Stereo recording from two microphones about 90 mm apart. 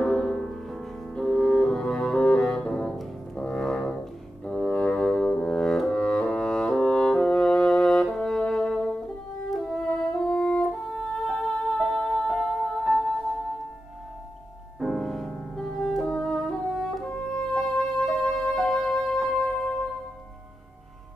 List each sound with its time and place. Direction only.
0.0 s music: 5° left (ahead or behind)
14.8 s music: centre (ahead or behind)
15.9 s french horn: 5° left (ahead or behind)